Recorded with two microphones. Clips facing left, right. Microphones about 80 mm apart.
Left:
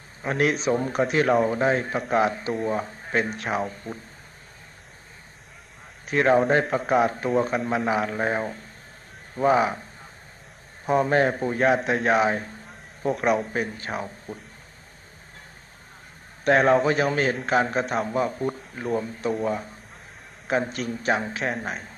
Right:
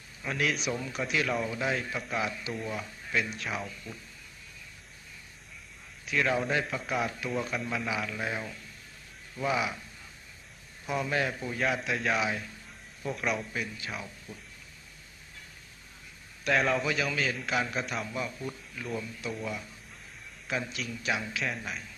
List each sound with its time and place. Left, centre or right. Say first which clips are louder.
0.2 s a man's voice: left 8 dB; left
6.0 s a man's voice: left 9 dB; left
10.9 s a man's voice: left 10 dB; left
16.4 s a man's voice: left 9 dB; left